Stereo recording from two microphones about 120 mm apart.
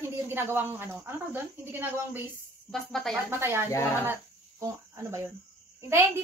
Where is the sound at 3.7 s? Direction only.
20° left (ahead or behind).